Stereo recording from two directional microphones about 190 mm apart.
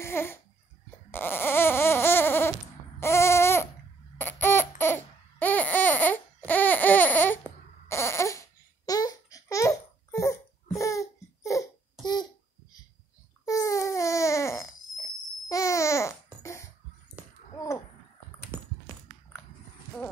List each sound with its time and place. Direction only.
0.0 s a sound: 15° left (ahead or behind)
1.1 s baby cry: 10° left (ahead or behind)
4.2 s laughter: 10° left (ahead or behind)
7.9 s babbling: 15° left (ahead or behind)
13.5 s baby cry: 15° left (ahead or behind)
15.4 s babbling: 15° left (ahead or behind)
16.4 s cough: 15° left (ahead or behind)
17.2 s a sound: 10° right (ahead or behind)
18.5 s a sound: 10° right (ahead or behind)